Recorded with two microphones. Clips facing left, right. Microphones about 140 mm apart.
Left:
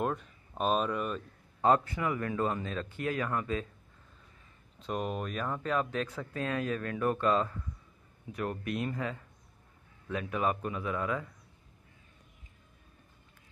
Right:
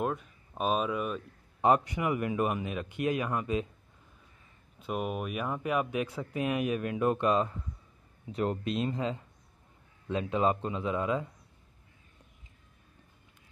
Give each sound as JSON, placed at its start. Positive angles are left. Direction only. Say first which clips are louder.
{"t": 0.0, "sound": "speech", "louder": "even", "side_deg": -5}
{"t": 1.6, "sound": "speech", "louder": "right 1 dB", "side_deg": -15}
{"t": 4.7, "sound": "a man's voice", "louder": "right 1 dB", "side_deg": -5}